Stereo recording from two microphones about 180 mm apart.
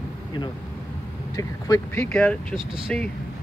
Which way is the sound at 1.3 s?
20° left (ahead or behind).